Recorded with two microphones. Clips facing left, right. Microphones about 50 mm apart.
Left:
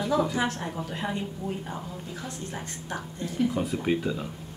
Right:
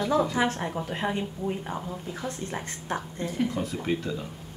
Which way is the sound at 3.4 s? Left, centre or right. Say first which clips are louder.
Left 2 dB; centre.